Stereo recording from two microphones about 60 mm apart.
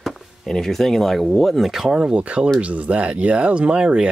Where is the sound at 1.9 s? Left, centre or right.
Centre.